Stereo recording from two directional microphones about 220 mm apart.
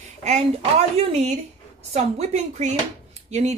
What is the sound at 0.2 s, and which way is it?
Speech, 30° right (ahead or behind).